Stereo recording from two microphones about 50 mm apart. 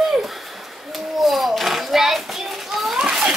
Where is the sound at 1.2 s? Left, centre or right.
Centre.